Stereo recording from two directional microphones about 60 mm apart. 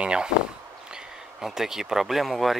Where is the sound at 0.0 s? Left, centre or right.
Centre.